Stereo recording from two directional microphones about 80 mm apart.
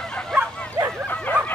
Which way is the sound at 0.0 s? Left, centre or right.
Centre.